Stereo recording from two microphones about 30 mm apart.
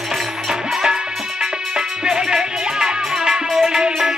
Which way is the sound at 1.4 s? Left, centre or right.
Centre.